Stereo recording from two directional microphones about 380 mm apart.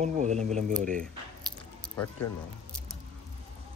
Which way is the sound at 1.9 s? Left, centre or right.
Centre.